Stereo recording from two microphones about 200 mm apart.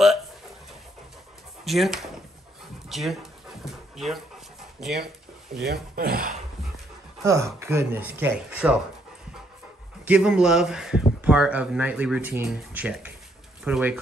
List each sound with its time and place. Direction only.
1.6 s speech: centre (ahead or behind)
5.6 s speech: 50° right (ahead or behind)
7.2 s speech: 15° right (ahead or behind)
10.0 s speech: 5° right (ahead or behind)